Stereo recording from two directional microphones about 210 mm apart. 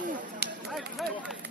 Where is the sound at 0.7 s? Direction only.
Centre (ahead or behind).